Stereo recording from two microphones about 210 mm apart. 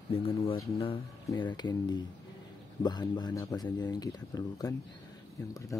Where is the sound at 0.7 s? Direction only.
25° left (ahead or behind).